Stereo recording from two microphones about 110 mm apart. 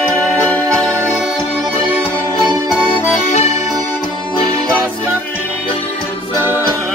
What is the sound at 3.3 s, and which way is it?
Accordion, 80° left.